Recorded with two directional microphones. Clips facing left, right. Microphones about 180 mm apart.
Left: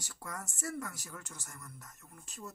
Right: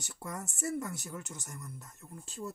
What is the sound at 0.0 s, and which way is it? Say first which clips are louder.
Speech: right 3 dB; 25° right (ahead or behind).